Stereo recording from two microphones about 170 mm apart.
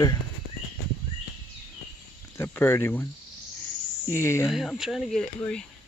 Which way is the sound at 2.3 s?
10° left (ahead or behind).